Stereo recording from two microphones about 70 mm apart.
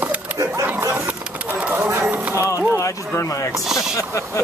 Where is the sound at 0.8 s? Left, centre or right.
Right.